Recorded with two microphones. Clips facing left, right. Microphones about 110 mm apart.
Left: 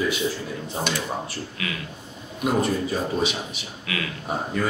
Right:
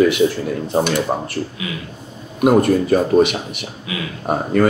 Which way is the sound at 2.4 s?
60° right (ahead or behind).